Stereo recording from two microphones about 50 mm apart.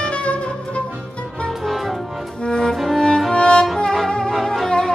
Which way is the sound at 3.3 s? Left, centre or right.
Centre.